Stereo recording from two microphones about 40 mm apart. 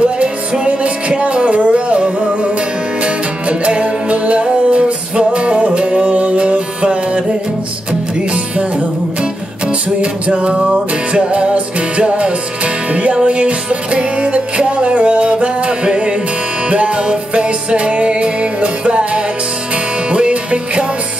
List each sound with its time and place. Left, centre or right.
0.0 s music: right
8.3 s music: right